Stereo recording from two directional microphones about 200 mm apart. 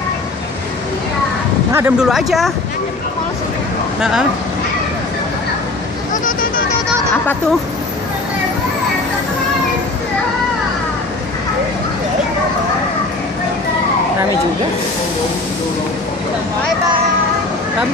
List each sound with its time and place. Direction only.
1.7 s speech: 10° right (ahead or behind)
4.0 s speech: 5° right (ahead or behind)
6.2 s vehicle: 45° left (ahead or behind)